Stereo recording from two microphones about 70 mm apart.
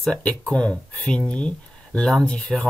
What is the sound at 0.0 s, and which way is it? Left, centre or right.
Speech, centre.